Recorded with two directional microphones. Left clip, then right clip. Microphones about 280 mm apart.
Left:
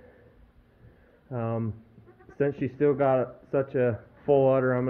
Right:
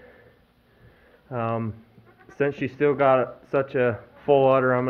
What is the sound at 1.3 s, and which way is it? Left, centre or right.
Speech, centre.